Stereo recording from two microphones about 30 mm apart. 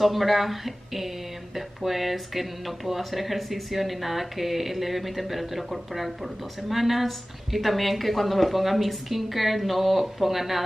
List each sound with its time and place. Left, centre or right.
0.0 s speech: centre